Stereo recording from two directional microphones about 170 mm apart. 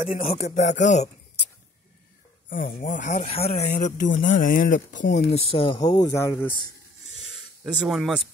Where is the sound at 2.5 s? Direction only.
55° left (ahead or behind).